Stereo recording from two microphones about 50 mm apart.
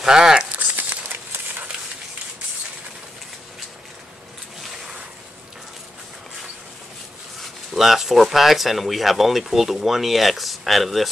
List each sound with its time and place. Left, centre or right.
0.0 s crumpling: centre
0.6 s crumpling: right
7.7 s speech: centre